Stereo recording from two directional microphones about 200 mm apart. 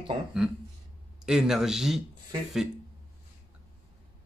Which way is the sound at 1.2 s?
Centre (ahead or behind).